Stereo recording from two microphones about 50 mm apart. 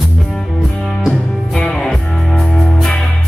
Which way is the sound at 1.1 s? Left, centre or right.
Left.